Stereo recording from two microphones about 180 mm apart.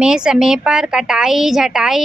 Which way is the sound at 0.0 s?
5° right (ahead or behind).